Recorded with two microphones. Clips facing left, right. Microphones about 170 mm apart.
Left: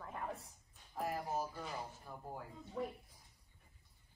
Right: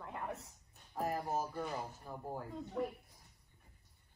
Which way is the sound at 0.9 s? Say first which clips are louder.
Right 3 dB; 40° right (ahead or behind).